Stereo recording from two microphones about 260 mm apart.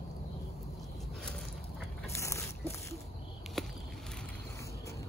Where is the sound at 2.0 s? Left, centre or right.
Centre.